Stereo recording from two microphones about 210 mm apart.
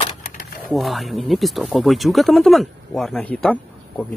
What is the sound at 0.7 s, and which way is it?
Speech, centre (ahead or behind).